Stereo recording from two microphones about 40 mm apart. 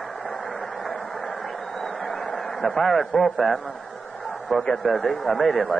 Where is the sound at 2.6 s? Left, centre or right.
Centre.